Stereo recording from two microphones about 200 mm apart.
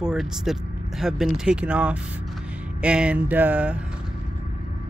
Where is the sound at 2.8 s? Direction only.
5° right (ahead or behind).